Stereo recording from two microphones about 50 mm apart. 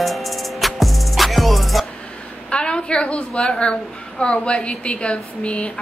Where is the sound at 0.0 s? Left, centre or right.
Centre.